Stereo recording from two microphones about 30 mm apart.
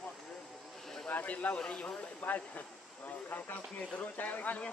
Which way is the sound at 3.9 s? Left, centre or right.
Left.